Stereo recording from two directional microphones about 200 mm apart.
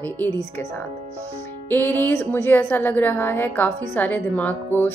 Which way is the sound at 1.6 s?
10° left (ahead or behind).